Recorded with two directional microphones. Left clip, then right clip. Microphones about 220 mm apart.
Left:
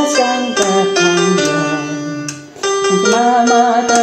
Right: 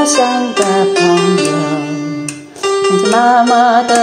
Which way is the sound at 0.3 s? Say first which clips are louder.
Right 1 dB; 5° right (ahead or behind).